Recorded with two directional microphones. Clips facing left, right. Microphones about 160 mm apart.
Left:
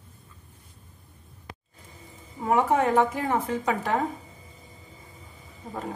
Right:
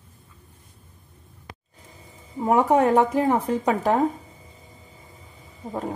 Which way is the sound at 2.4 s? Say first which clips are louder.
Right 4 dB; 35° right (ahead or behind).